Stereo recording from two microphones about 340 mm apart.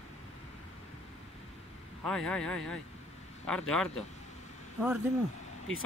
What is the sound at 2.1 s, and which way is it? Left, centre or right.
Speech, centre.